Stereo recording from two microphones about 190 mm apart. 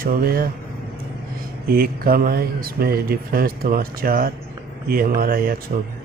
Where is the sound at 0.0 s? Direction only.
50° right (ahead or behind).